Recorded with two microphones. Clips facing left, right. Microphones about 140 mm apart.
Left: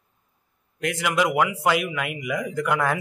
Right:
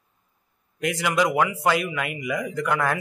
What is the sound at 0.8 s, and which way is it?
Speech, centre (ahead or behind).